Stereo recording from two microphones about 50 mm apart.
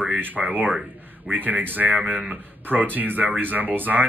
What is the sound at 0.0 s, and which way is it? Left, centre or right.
Speech, right.